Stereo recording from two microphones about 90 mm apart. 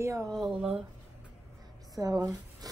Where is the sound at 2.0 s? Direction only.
45° right (ahead or behind).